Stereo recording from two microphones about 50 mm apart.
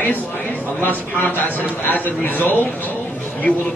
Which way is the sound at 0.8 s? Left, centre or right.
Left.